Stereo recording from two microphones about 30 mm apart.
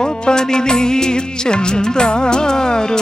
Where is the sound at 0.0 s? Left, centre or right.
Left.